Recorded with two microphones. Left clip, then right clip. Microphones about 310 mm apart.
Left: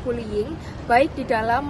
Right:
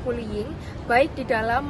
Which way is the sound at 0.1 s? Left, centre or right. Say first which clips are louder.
Left 5 dB; centre.